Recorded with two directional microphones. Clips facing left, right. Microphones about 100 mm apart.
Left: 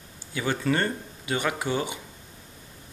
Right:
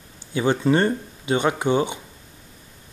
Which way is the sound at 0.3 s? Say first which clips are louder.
Right 7 dB; 25° right (ahead or behind).